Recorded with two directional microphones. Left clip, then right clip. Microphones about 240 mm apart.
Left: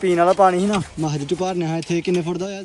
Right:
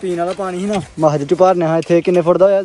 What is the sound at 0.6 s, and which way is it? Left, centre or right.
Speech, centre.